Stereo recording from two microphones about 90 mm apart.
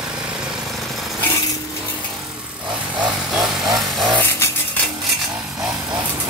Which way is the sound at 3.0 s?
10° right (ahead or behind).